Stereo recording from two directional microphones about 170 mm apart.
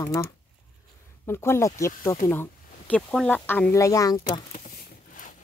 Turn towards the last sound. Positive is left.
turn(degrees=20)  # may be behind; listen again after turning